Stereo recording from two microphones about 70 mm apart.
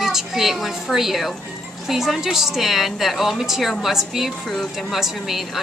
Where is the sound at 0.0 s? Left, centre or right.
Centre.